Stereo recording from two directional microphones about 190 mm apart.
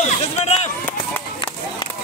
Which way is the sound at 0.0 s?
35° left (ahead or behind).